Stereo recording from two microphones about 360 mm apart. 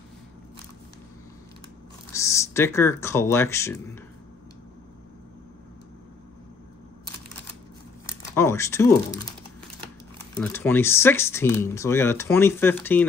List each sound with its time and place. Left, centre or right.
2.1 s speech: centre
8.4 s speech: centre
10.3 s speech: centre